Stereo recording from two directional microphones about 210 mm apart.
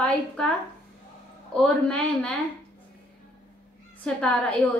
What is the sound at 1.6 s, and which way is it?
Speech, 5° left (ahead or behind).